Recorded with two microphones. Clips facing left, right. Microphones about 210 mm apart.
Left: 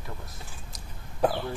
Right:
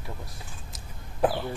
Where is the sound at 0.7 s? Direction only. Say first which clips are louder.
Right 1 dB; centre (ahead or behind).